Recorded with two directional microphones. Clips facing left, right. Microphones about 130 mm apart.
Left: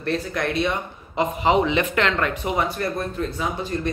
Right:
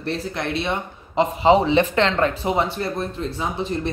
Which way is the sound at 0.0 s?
30° right (ahead or behind).